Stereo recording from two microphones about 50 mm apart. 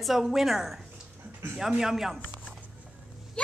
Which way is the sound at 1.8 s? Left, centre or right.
Centre.